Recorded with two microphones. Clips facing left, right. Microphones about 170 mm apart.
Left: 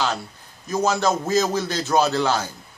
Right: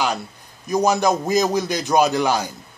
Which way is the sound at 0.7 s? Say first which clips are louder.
Right 3 dB; 15° right (ahead or behind).